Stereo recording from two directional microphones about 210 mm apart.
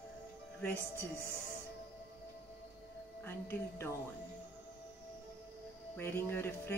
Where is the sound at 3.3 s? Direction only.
10° left (ahead or behind).